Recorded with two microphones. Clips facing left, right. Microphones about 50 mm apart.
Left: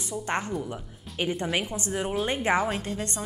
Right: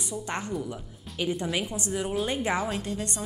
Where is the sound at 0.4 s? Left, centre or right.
Centre.